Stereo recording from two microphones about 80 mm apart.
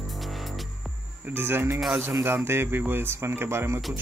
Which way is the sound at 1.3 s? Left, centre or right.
Right.